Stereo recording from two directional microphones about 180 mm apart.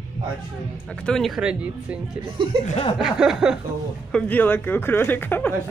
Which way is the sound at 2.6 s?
35° left (ahead or behind).